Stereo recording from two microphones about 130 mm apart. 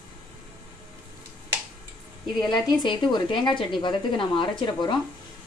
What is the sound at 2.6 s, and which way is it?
Speech, 35° left (ahead or behind).